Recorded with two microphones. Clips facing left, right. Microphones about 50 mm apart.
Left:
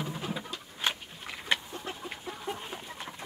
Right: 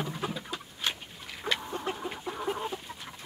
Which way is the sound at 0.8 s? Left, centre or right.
Left.